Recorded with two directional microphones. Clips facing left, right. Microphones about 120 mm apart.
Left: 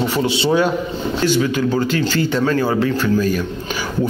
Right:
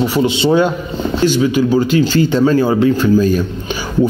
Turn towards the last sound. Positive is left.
turn(degrees=-25)  # may be behind; listen again after turning